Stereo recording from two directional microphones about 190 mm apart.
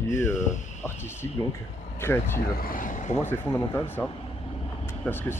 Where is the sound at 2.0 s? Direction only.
10° left (ahead or behind).